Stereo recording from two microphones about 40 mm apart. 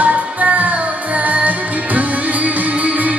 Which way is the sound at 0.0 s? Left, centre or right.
Right.